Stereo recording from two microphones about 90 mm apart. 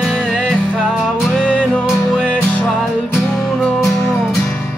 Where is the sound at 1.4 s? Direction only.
10° left (ahead or behind).